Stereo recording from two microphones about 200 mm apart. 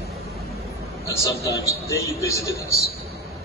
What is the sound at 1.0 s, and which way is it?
A man's voice, 15° left (ahead or behind).